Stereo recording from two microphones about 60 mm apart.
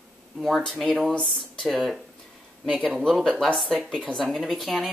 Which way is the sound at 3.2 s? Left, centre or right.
Centre.